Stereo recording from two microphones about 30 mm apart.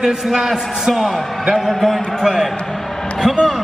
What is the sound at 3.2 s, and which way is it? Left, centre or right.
Speech, centre.